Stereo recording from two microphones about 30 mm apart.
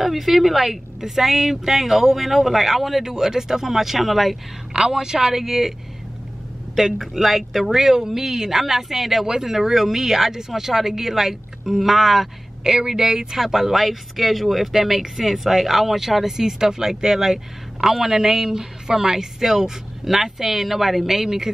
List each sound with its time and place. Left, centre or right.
0.0 s speech: centre
4.7 s a woman's voice: right